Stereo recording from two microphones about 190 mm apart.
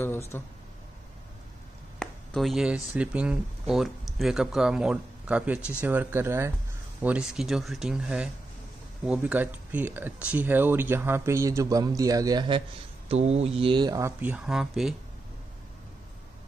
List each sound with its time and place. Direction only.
0.3 s speech: 10° left (ahead or behind)
2.0 s speech: centre (ahead or behind); by 12.6 s 25° right (ahead or behind)
13.1 s speech: 35° right (ahead or behind); by 15.0 s centre (ahead or behind)